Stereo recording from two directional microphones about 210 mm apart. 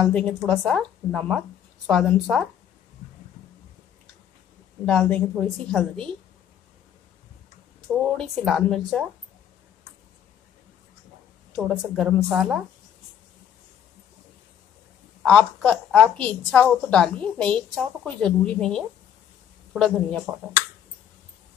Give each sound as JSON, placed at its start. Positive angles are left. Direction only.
{"t": 0.0, "sound": "a woman's voice", "side_deg": 10}
{"t": 4.8, "sound": "a woman's voice", "side_deg": 5}
{"t": 7.9, "sound": "a woman's voice", "side_deg": 0}
{"t": 11.5, "sound": "a woman's voice", "side_deg": 0}
{"t": 15.2, "sound": "a woman's voice", "side_deg": 5}